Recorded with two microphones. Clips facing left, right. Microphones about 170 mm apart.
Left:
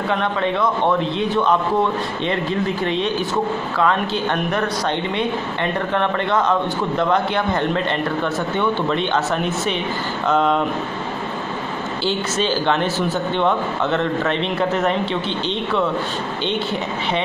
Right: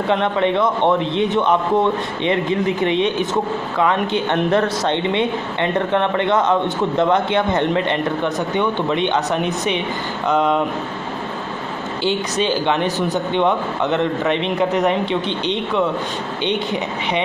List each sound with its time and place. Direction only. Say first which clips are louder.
0.1 s a man's voice: right 4 dB; 25° right (ahead or behind)
12.0 s speech: right 2 dB; 15° right (ahead or behind)